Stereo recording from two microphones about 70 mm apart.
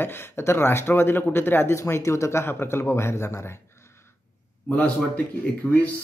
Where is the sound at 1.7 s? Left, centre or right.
Left.